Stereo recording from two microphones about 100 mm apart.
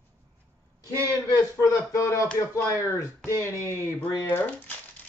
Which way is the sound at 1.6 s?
30° left (ahead or behind).